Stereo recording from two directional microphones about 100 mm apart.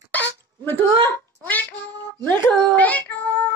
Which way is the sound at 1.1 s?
15° left (ahead or behind).